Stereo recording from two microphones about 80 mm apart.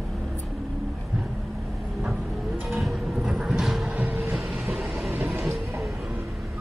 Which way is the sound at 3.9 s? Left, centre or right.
Right.